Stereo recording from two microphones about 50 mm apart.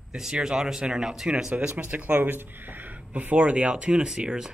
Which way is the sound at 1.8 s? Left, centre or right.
Right.